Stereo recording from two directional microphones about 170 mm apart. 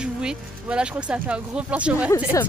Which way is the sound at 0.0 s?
5° right (ahead or behind).